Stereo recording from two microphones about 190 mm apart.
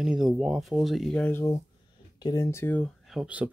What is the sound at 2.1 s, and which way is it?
Speech, 20° left (ahead or behind).